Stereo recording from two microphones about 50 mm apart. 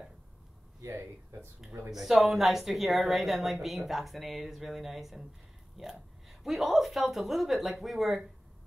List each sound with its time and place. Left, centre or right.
1.3 s speech: right
1.9 s a woman's voice: centre